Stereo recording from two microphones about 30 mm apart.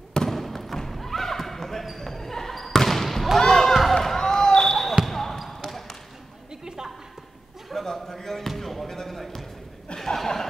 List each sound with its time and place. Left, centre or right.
0.1 s basketball bounce: centre
3.3 s a sound: centre
3.9 s basketball bounce: centre
5.0 s basketball bounce: centre
7.8 s a sound: centre
8.8 s basketball bounce: centre
9.9 s chuckle: centre